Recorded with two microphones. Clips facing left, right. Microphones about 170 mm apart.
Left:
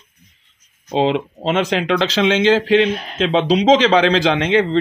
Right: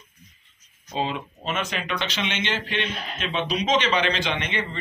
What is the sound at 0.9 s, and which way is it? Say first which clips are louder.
Speech: left 11 dB; 90° left.